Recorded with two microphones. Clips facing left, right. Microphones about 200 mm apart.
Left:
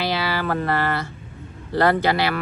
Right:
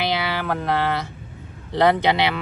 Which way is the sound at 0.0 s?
15° right (ahead or behind).